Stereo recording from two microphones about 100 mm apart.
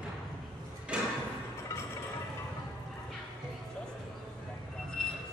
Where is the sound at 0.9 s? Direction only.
10° right (ahead or behind).